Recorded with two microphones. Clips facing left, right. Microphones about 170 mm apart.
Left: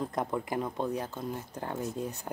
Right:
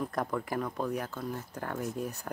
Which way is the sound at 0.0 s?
20° left (ahead or behind).